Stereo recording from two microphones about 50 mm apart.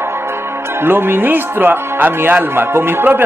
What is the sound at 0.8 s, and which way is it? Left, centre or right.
Speech, right.